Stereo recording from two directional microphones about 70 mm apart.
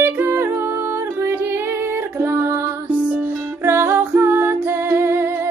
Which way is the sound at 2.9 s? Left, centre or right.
Right.